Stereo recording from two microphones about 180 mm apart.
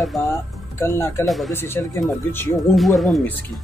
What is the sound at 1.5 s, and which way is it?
Speech, 15° left (ahead or behind).